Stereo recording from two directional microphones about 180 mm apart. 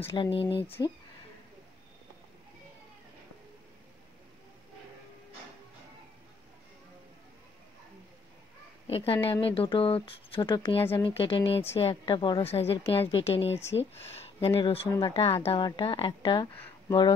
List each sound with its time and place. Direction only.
0.0 s a woman's voice: 30° left (ahead or behind)
0.7 s speech: 10° left (ahead or behind)
8.8 s a woman's voice: 30° left (ahead or behind)